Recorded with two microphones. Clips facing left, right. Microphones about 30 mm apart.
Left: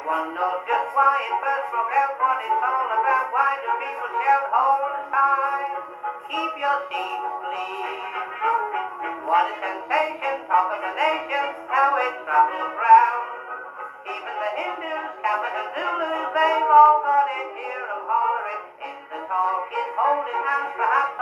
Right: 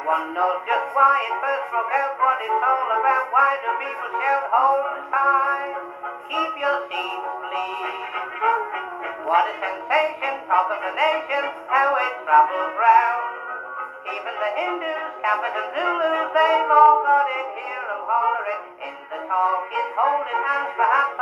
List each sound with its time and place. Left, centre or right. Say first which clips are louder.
0.0 s synthetic singing: right 3 dB; centre
4.5 s music: right 1 dB; centre
10.2 s synthetic singing: even; centre
14.3 s music: right 2 dB; centre
14.7 s synthetic singing: right 3 dB; centre
17.2 s music: even; centre